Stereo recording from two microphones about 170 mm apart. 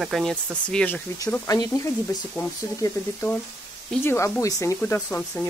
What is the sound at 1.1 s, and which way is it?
Speech, 20° left (ahead or behind).